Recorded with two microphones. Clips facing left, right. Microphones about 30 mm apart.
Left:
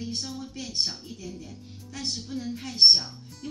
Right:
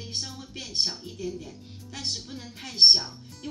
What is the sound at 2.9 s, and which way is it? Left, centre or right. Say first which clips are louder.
Music: even; right.